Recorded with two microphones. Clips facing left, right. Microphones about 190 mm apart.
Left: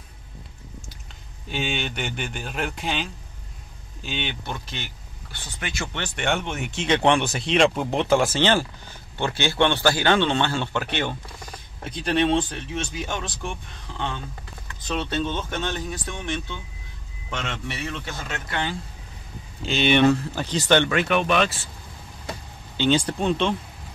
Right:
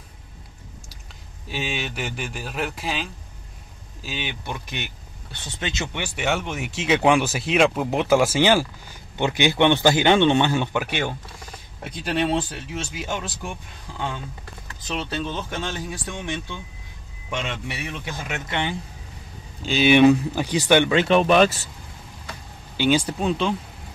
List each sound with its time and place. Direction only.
1.5 s speech: 5° right (ahead or behind); by 5.9 s 25° right (ahead or behind)
5.9 s a man's voice: 5° right (ahead or behind)
19.6 s a man's voice: 5° right (ahead or behind)
20.9 s speech: 30° right (ahead or behind)
22.8 s speech: 10° right (ahead or behind)